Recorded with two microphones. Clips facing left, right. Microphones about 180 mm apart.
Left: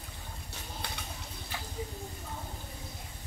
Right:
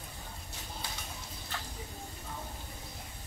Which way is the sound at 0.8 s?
65° left (ahead or behind).